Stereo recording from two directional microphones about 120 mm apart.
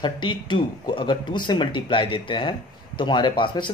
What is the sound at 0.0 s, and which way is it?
Speech, 40° left (ahead or behind).